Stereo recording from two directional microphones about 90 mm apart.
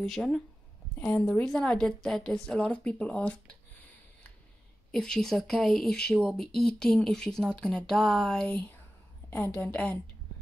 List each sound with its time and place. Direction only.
0.0 s a woman's voice: 5° left (ahead or behind)
4.9 s speech: 5° left (ahead or behind)
8.5 s a woman's voice: 15° left (ahead or behind)